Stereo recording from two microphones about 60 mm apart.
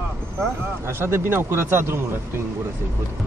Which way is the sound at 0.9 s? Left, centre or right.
Right.